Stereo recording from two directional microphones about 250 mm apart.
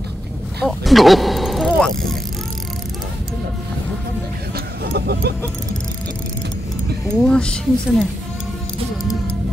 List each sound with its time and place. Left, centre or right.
0.6 s speech: centre
4.9 s a sound: right
7.2 s speech: centre